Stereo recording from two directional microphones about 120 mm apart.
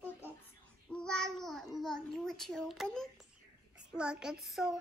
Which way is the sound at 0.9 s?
5° left (ahead or behind).